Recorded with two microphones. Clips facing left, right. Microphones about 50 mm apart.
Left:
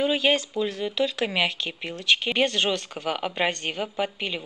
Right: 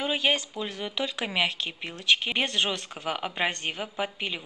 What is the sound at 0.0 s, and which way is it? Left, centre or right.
A woman's voice, centre.